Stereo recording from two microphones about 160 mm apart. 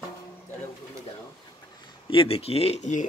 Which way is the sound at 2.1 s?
35° left (ahead or behind).